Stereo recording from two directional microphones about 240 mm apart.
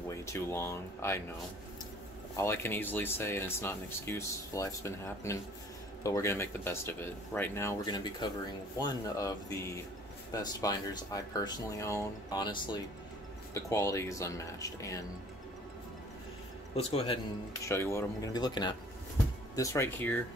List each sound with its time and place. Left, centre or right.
0.1 s speech: centre
2.3 s speech: centre
16.7 s speech: left
17.6 s speech: centre